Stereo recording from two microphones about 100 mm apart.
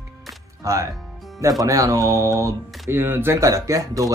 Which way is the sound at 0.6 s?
30° right (ahead or behind).